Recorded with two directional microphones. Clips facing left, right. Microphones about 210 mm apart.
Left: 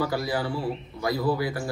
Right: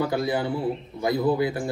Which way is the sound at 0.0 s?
20° right (ahead or behind).